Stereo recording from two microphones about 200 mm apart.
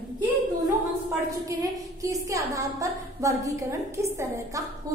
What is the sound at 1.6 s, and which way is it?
A woman's voice, 15° right (ahead or behind).